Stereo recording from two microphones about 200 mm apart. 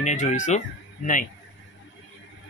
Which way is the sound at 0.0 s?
35° left (ahead or behind).